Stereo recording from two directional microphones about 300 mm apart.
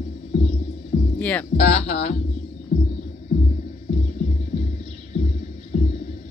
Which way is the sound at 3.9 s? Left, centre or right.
Left.